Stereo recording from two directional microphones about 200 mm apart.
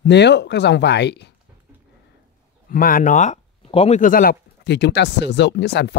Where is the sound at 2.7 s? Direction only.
45° left (ahead or behind).